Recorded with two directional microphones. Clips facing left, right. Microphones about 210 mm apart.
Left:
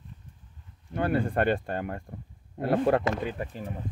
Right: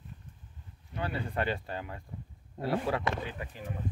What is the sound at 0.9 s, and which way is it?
Speech, 50° left (ahead or behind).